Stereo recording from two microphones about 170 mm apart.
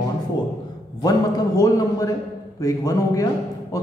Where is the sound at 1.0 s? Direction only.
20° left (ahead or behind).